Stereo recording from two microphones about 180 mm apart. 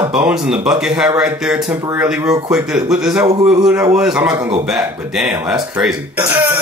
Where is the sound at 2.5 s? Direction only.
5° right (ahead or behind).